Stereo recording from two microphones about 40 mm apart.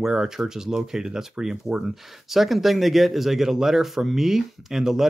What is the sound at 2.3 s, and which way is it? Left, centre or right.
Speech, centre.